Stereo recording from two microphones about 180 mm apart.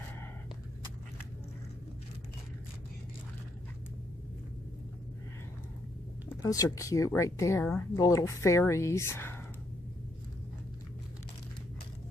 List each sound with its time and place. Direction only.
6.2 s speech: 20° left (ahead or behind)